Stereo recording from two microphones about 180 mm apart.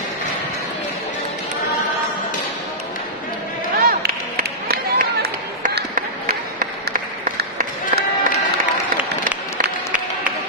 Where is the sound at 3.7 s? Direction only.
55° right (ahead or behind).